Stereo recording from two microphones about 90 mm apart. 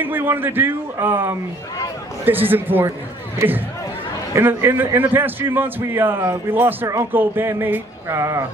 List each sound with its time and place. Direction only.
0.0 s a man's voice: 25° right (ahead or behind)